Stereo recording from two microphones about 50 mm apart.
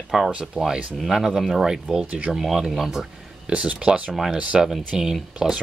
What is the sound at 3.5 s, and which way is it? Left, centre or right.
Speech, right.